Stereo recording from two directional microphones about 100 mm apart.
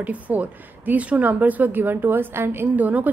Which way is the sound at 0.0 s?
15° right (ahead or behind).